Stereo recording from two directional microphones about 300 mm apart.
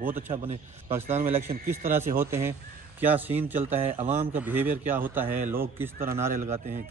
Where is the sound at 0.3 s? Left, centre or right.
Centre.